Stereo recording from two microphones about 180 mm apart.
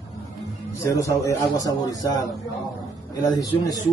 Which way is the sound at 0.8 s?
15° left (ahead or behind).